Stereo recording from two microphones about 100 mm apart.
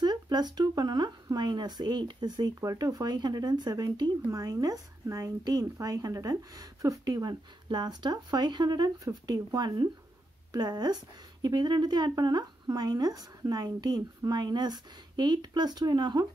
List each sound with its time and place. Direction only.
0.0 s a woman's voice: 45° right (ahead or behind)